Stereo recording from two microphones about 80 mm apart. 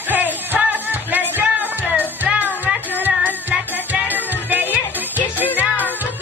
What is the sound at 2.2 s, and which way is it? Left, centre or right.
Music, right.